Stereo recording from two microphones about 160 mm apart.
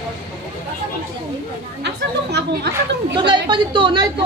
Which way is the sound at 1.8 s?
90° right.